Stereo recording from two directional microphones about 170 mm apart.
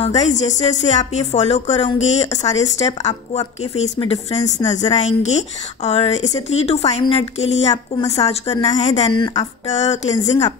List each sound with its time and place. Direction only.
0.0 s a woman's voice: 40° left (ahead or behind)